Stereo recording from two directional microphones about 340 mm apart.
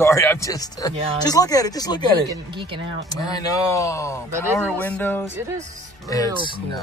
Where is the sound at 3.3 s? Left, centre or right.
Centre.